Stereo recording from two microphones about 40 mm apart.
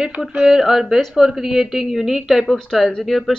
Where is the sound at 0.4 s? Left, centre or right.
Centre.